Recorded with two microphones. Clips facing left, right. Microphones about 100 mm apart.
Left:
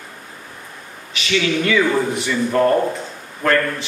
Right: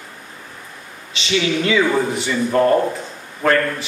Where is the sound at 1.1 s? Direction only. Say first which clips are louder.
Even; 25° right (ahead or behind).